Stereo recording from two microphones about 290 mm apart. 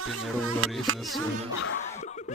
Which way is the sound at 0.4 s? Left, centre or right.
Right.